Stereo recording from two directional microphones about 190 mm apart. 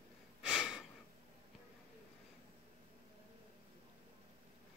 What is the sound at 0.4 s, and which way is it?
Breathing, 5° right (ahead or behind).